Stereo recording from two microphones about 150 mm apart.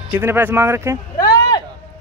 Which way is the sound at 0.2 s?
15° right (ahead or behind).